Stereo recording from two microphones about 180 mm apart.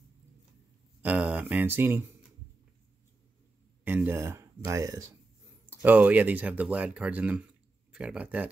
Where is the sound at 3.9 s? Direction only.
10° right (ahead or behind).